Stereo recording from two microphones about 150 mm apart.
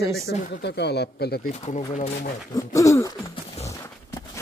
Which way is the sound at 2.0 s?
55° left (ahead or behind).